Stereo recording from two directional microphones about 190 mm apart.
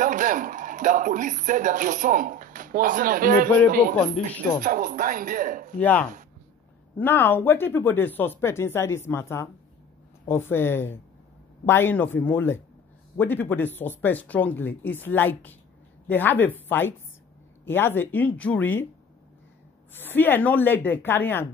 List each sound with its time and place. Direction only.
0.0 s speech: 45° right (ahead or behind)
5.8 s speech: 10° left (ahead or behind)
19.9 s speech: 10° left (ahead or behind)